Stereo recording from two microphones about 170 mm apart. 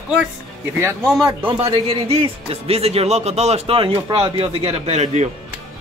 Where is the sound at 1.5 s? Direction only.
35° right (ahead or behind).